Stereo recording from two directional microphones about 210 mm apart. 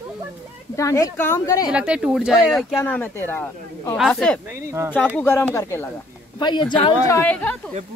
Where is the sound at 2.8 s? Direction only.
10° left (ahead or behind).